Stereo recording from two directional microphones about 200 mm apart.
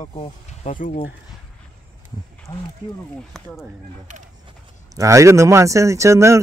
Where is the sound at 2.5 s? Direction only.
15° left (ahead or behind).